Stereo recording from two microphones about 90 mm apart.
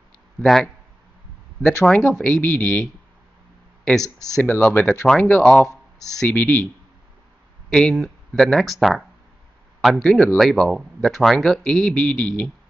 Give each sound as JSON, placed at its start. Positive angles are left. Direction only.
{"t": 0.4, "sound": "speech", "side_deg": 5}
{"t": 1.9, "sound": "speech", "side_deg": 10}
{"t": 4.4, "sound": "speech", "side_deg": 20}
{"t": 7.7, "sound": "speech", "side_deg": 5}